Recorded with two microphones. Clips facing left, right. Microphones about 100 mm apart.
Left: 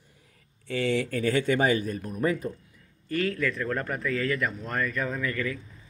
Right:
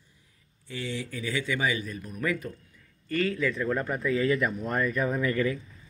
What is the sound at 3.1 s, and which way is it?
Speech, centre (ahead or behind).